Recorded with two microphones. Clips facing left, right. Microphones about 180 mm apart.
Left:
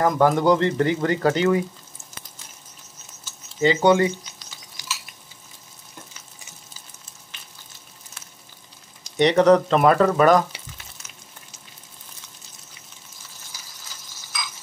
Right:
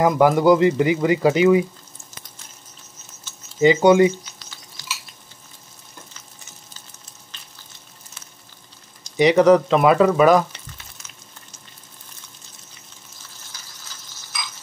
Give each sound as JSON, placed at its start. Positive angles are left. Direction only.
{"t": 0.0, "sound": "speech", "side_deg": -10}
{"t": 3.5, "sound": "speech", "side_deg": -15}
{"t": 4.8, "sound": "a sound", "side_deg": 15}
{"t": 9.1, "sound": "speech", "side_deg": -5}